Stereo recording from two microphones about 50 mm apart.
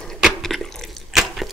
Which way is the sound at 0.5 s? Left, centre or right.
Centre.